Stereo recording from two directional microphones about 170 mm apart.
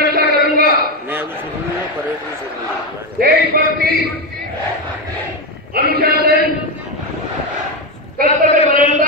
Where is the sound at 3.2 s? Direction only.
60° right (ahead or behind).